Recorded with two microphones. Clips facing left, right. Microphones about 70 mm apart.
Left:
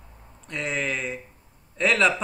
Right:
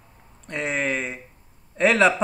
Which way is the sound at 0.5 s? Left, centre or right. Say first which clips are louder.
Right 3 dB; right.